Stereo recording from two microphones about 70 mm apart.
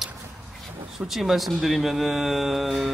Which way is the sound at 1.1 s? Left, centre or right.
Centre.